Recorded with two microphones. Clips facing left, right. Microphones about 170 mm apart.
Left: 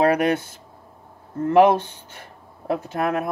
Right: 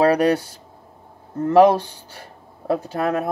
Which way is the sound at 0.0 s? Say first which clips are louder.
Right 2 dB; 35° right (ahead or behind).